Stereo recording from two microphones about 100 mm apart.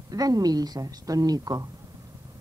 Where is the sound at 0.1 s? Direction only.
40° right (ahead or behind).